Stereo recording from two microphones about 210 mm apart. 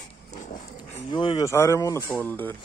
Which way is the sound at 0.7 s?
20° left (ahead or behind).